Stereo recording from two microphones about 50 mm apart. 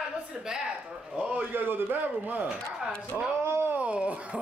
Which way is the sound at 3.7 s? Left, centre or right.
Right.